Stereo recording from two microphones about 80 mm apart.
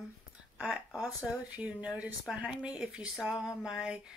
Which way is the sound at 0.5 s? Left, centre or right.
Centre.